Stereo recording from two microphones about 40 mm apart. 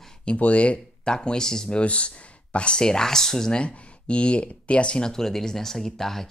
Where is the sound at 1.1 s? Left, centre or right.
Centre.